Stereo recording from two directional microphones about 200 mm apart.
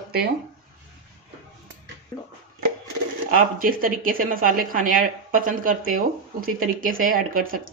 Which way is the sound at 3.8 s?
45° right (ahead or behind).